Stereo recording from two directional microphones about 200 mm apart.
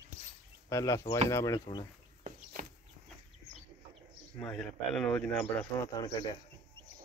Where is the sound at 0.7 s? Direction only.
15° left (ahead or behind).